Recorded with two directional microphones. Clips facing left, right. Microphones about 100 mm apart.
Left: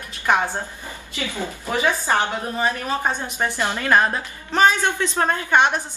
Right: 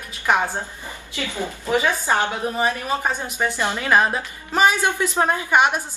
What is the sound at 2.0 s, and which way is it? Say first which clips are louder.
A woman's voice: even; 15° right (ahead or behind).